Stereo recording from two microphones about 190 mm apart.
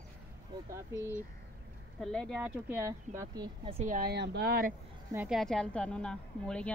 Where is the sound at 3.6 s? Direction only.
35° right (ahead or behind).